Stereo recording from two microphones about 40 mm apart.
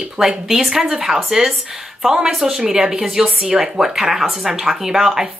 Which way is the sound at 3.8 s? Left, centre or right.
Centre.